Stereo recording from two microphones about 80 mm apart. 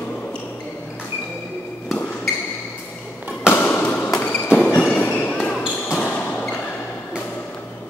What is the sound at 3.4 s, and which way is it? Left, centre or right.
Basketball bounce, left.